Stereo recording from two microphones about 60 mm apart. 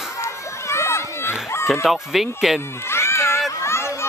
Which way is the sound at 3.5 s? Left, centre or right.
Left.